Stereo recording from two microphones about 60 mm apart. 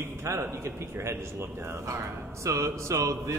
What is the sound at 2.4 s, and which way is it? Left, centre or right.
Mantra, right.